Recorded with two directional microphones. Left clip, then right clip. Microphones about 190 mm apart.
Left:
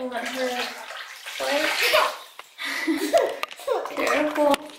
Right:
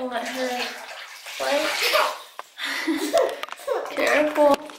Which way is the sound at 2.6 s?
Centre (ahead or behind).